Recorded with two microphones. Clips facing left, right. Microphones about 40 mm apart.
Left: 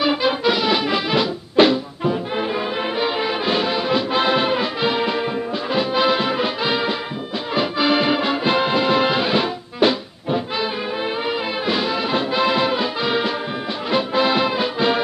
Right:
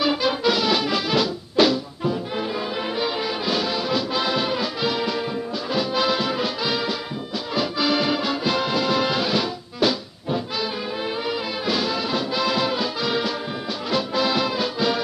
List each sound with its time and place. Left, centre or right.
0.0 s music: centre